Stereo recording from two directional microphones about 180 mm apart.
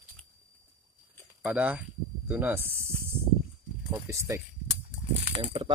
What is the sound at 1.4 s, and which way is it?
Speech, 10° right (ahead or behind).